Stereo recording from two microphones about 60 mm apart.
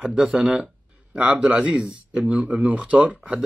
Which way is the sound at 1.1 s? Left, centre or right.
Right.